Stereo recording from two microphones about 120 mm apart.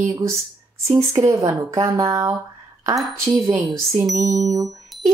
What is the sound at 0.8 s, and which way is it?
Speech, 25° right (ahead or behind).